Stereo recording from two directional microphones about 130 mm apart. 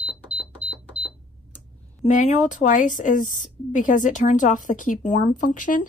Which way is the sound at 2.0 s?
70° left (ahead or behind).